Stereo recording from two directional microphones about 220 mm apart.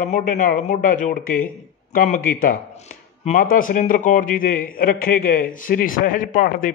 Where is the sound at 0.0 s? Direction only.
35° left (ahead or behind).